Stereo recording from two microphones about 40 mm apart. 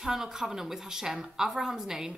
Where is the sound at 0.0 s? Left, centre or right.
Centre.